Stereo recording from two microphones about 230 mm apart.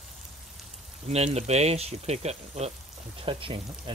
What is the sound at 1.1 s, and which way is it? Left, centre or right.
Speech, right.